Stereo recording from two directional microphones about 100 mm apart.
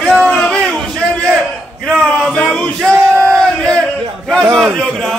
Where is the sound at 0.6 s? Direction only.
Centre (ahead or behind).